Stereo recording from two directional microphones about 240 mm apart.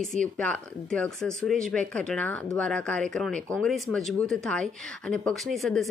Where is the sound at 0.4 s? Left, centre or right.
Centre.